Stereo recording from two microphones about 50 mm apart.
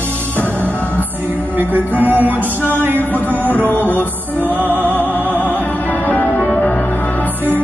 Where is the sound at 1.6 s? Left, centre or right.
Right.